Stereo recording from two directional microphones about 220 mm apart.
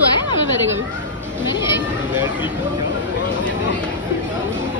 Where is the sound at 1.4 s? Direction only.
20° left (ahead or behind).